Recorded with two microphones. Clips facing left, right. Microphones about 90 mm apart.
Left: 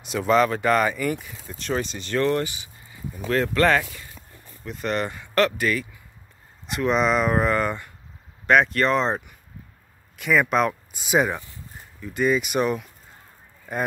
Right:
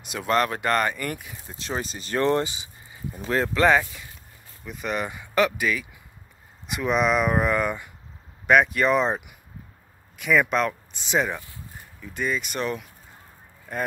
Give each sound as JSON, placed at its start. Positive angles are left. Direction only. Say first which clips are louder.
{"t": 0.0, "sound": "speech", "louder": "left 4 dB", "side_deg": 0}
{"t": 1.8, "sound": "speech", "louder": "left 3 dB", "side_deg": -40}
{"t": 2.1, "sound": "speech", "louder": "even", "side_deg": -25}
{"t": 3.5, "sound": "speech", "louder": "right 2 dB", "side_deg": -10}